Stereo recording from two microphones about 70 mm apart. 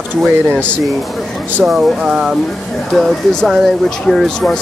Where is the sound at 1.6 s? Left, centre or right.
Centre.